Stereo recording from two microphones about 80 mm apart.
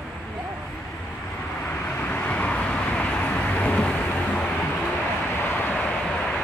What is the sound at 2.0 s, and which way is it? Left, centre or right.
Vehicle, centre.